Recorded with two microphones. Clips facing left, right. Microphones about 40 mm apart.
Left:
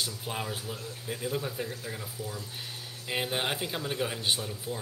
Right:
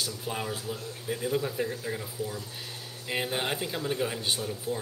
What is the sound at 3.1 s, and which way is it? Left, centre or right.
Speech, centre.